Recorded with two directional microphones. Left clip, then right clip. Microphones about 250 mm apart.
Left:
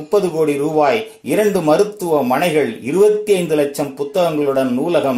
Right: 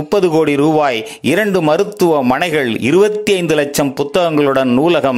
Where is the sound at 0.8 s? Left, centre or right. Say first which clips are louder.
Right 1 dB; right.